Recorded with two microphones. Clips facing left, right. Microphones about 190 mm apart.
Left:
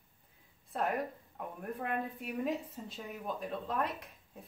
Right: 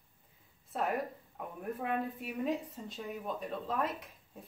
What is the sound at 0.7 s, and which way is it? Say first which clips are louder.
A woman's voice: even; centre (ahead or behind).